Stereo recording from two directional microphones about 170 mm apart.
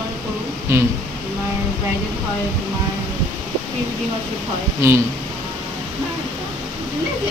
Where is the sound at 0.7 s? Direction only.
15° right (ahead or behind).